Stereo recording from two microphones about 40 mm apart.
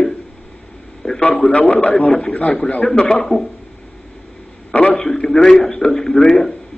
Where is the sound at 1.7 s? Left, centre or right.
Left.